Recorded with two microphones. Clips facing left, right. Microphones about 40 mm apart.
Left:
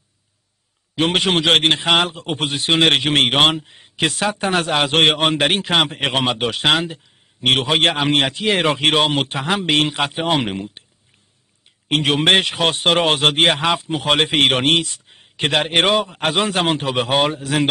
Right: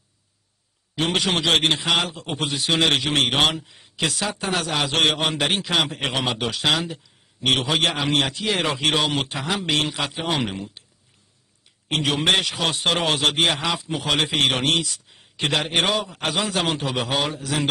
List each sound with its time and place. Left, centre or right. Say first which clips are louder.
0.9 s a man's voice: left 5 dB; left
11.9 s a man's voice: left 5 dB; left